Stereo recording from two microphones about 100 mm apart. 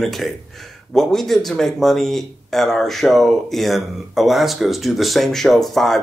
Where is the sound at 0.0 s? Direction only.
Centre (ahead or behind).